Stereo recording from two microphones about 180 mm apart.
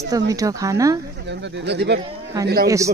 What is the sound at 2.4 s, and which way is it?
Speech, 60° right (ahead or behind).